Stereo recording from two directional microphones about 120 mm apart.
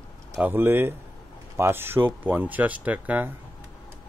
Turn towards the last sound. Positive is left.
turn(degrees=-15)  # may be behind; listen again after turning